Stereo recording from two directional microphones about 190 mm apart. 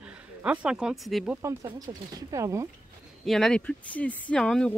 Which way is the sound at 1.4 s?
15° right (ahead or behind).